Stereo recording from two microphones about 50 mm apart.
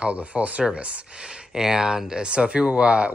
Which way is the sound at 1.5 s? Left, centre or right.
Centre.